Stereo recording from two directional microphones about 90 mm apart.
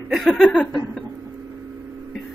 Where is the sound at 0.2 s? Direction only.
10° left (ahead or behind).